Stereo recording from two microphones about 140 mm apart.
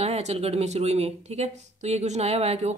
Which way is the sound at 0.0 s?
50° right (ahead or behind).